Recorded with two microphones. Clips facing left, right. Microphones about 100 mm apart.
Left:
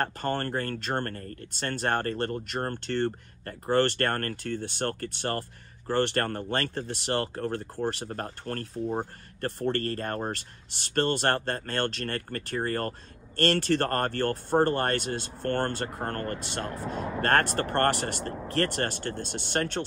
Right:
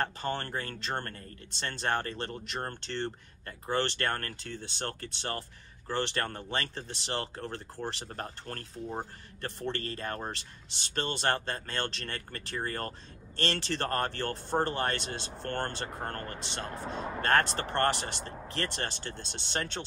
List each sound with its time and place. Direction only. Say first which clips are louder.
0.0 s speech: left 4 dB; 50° left (ahead or behind)